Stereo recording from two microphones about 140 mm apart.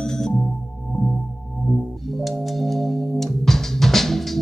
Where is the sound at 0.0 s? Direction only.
5° left (ahead or behind).